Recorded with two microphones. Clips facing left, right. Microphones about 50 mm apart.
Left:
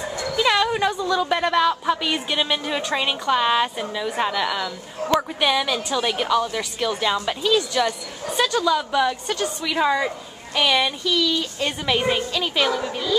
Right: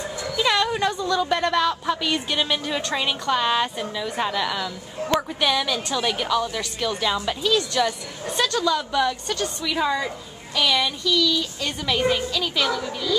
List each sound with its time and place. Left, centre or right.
0.4 s a woman's voice: centre